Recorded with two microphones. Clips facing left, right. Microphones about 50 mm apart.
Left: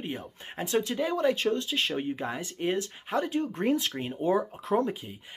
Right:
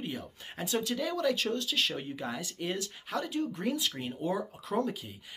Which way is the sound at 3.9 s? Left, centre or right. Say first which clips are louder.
Left 6 dB; left.